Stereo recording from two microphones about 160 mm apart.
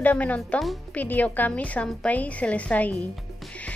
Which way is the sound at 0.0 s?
10° left (ahead or behind).